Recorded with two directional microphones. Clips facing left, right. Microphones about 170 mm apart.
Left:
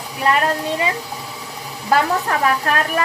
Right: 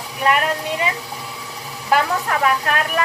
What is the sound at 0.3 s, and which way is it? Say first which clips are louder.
A woman's voice: left 1 dB; 35° left (ahead or behind).